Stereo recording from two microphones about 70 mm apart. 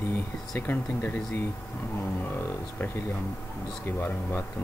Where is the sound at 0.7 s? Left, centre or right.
Left.